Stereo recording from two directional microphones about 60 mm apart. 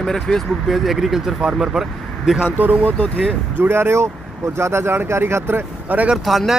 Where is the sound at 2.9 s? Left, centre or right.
Left.